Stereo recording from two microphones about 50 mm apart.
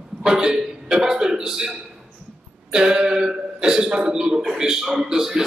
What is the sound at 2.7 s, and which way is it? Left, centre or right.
A man's voice, centre.